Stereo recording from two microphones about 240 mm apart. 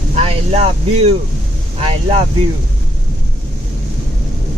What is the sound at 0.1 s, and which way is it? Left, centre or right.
Speech, right.